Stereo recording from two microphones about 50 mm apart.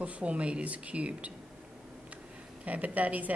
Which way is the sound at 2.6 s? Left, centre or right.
Right.